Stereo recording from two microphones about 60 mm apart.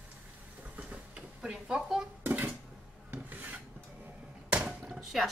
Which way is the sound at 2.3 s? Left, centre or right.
Right.